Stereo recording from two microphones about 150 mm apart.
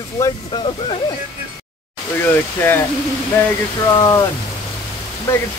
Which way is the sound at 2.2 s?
15° left (ahead or behind).